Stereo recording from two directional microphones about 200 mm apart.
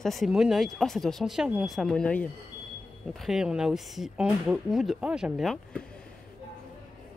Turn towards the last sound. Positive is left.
turn(degrees=0)  # may be behind; listen again after turning